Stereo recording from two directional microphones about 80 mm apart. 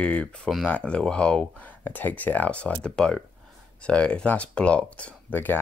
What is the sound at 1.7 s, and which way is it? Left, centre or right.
Speech, left.